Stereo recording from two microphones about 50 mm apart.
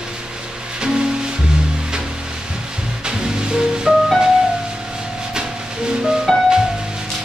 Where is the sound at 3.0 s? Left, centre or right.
Centre.